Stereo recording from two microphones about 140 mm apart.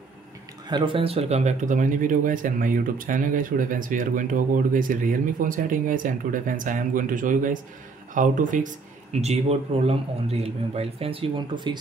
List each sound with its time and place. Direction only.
0.7 s speech: 35° right (ahead or behind); by 8.7 s 65° right (ahead or behind)
9.2 s speech: 50° right (ahead or behind); by 11.8 s 35° right (ahead or behind)